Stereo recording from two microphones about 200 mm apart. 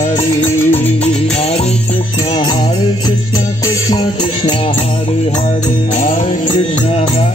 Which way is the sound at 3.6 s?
20° left (ahead or behind).